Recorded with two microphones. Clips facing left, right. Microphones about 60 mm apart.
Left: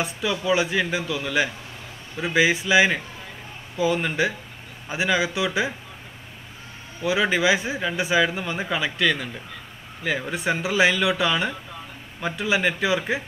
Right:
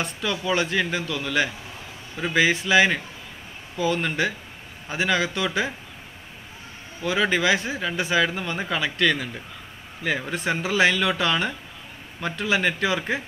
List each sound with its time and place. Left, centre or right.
0.0 s speech: centre
7.0 s speech: centre